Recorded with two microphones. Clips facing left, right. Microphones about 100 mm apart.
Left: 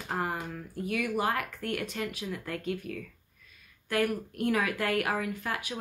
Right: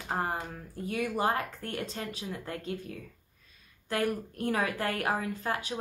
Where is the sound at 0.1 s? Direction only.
30° right (ahead or behind).